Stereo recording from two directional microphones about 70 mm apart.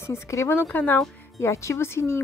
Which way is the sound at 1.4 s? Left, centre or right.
Left.